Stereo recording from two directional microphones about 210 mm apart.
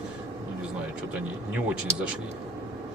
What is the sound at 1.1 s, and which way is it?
Speech, 5° right (ahead or behind).